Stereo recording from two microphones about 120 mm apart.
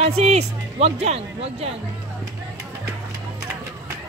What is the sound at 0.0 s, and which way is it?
Speech, 65° right (ahead or behind).